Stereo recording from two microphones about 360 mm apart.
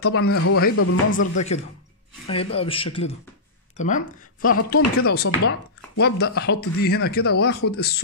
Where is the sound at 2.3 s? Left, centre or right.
Centre.